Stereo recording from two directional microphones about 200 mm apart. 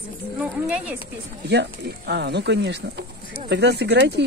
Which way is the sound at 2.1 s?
55° right (ahead or behind).